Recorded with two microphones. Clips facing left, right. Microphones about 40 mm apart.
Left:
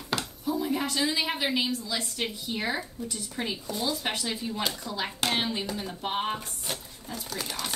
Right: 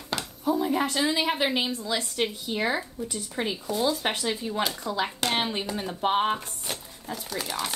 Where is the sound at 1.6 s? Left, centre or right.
Right.